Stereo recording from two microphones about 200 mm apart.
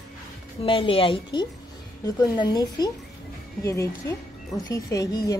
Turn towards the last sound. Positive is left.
turn(degrees=15)  # may be behind; listen again after turning